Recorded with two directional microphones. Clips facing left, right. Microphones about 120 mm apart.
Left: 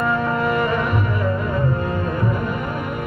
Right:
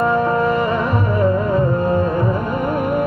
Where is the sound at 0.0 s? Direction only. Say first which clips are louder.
Right 4 dB; 30° right (ahead or behind).